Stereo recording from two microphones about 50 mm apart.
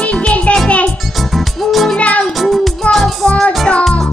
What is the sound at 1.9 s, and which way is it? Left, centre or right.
Music, left.